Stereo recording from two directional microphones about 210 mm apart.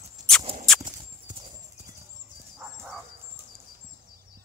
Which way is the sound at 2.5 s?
Centre (ahead or behind).